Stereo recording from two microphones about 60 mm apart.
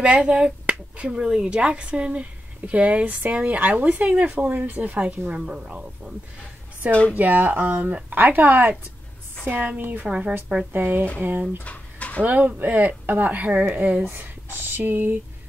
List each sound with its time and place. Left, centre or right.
0.0 s speech: centre
6.9 s a woman's voice: centre
7.2 s speech: right
9.8 s speech: right
10.0 s a woman's voice: centre
10.7 s speech: right
11.6 s bird: left
12.2 s speech: right